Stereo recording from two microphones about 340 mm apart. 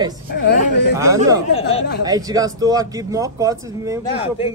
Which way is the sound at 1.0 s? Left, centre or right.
Centre.